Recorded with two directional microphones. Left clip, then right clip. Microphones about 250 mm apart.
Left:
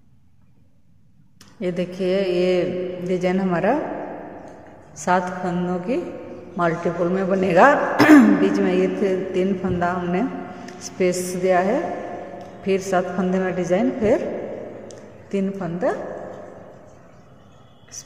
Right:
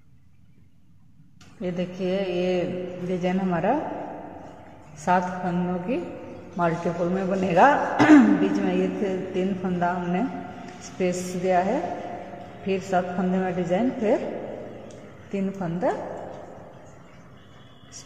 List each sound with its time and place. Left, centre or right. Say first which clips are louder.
1.6 s a man's voice: left 5 dB; left
5.0 s a man's voice: left 2 dB; left
14.9 s a sound: left 5 dB; left